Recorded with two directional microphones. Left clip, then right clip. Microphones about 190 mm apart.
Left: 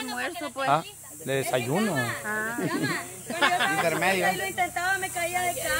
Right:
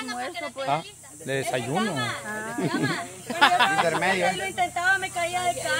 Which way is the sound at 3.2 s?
70° right (ahead or behind).